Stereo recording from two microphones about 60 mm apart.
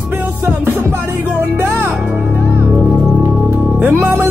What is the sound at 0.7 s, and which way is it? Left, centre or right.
Music, right.